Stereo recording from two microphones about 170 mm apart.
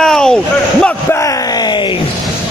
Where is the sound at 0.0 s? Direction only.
5° left (ahead or behind).